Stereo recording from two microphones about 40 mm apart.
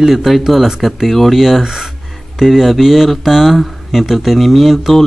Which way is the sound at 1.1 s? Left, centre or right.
Centre.